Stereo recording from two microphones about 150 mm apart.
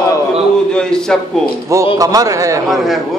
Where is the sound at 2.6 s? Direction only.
Centre (ahead or behind).